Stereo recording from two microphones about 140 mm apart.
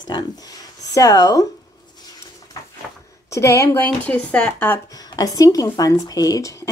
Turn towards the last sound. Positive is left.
turn(degrees=25)  # may be behind; listen again after turning